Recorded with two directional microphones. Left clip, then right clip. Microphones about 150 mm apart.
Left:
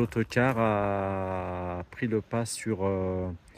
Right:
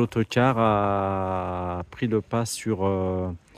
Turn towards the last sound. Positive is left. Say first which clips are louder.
# right 4 dB
turn(degrees=-35)  # may be behind; listen again after turning